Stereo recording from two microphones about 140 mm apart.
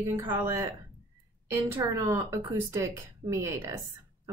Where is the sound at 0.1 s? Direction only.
15° right (ahead or behind).